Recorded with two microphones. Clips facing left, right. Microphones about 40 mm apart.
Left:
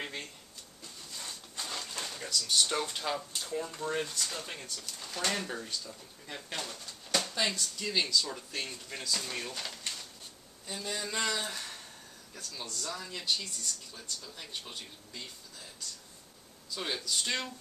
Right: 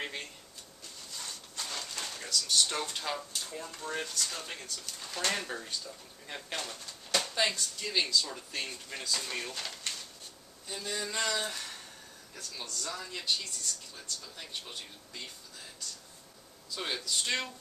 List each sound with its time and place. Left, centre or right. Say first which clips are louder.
0.0 s a sound: right 1 dB; centre
1.1 s wood: even; centre
1.7 s speech: left 1 dB; centre
16.7 s speech: even; centre